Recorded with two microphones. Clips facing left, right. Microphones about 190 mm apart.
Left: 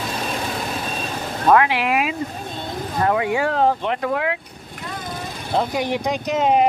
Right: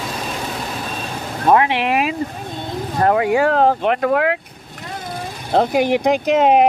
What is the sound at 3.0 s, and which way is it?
Speech, 50° right (ahead or behind).